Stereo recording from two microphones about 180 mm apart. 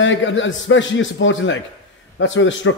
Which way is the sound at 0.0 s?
90° left.